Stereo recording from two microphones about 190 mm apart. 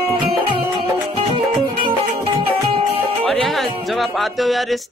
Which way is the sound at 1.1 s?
25° right (ahead or behind).